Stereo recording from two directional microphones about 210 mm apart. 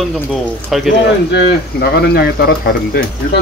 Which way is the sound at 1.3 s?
50° left (ahead or behind).